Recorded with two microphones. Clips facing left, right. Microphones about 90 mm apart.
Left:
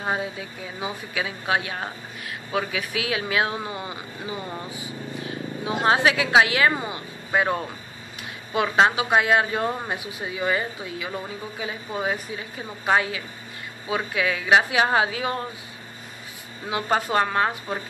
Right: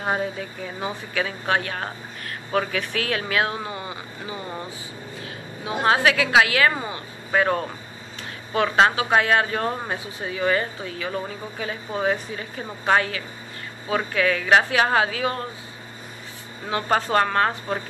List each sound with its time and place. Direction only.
0.2 s a woman's voice: 10° left (ahead or behind)
8.7 s a woman's voice: 15° left (ahead or behind)
16.6 s a woman's voice: 10° left (ahead or behind)